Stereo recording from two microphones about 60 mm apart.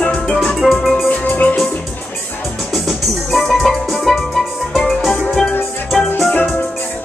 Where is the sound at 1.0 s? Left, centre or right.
Left.